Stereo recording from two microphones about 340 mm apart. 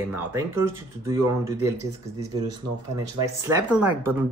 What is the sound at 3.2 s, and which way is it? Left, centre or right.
Speech, centre.